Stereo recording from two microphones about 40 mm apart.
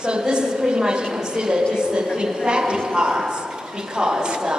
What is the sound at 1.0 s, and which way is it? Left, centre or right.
A woman's voice, centre.